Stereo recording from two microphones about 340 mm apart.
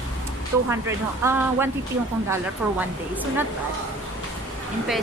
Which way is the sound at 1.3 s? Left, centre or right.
Centre.